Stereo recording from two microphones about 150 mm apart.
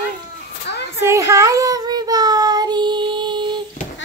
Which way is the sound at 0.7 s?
90° left.